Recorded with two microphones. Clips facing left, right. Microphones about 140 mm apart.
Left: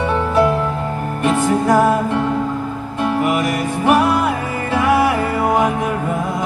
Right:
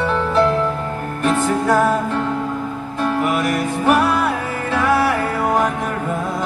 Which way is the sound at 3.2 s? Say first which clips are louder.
Left 1 dB; 10° left (ahead or behind).